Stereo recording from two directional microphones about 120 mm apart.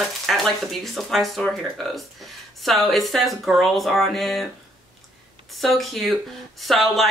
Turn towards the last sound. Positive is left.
turn(degrees=0)  # may be behind; listen again after turning